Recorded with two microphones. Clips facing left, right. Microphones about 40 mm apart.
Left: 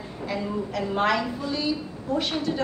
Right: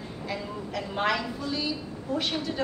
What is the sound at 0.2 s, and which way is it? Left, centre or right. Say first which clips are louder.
A woman's voice: left 6 dB; centre.